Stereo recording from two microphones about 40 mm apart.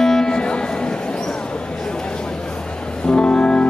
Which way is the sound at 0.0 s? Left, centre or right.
Centre.